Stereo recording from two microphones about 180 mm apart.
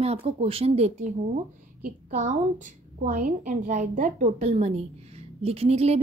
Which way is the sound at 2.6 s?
45° right (ahead or behind).